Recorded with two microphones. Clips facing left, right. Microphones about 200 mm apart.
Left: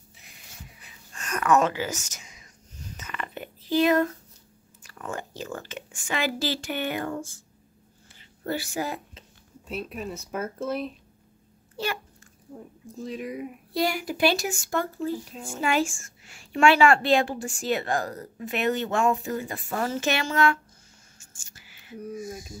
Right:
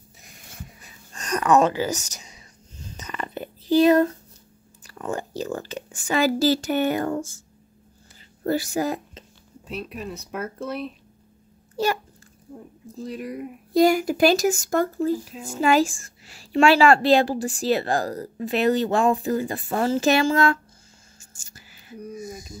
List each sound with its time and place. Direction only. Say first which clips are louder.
0.2 s a sound: right 6 dB; 50° right (ahead or behind); by 4.1 s 35° right (ahead or behind)
4.8 s a woman's voice: right 6 dB; 35° right (ahead or behind)
8.5 s a woman's voice: right 6 dB; 40° right (ahead or behind)
9.7 s speech: right 1 dB; centre (ahead or behind)
11.7 s a child's voice: right 7 dB; 40° right (ahead or behind)
13.0 s speech: right 1 dB; centre (ahead or behind)
13.7 s a woman's voice: right 9 dB; 45° right (ahead or behind)
21.2 s whispering: right 5 dB; 40° right (ahead or behind)
21.9 s speech: even; centre (ahead or behind)